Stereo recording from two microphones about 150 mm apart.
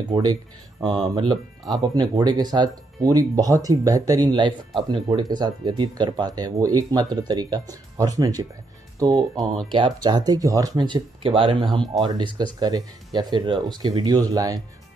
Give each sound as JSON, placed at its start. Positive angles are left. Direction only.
{"t": 0.1, "sound": "speech", "side_deg": -30}
{"t": 9.7, "sound": "speech", "side_deg": -35}